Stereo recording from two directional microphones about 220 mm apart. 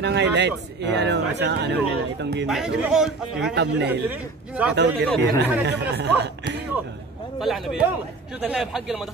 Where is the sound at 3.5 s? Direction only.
50° right (ahead or behind).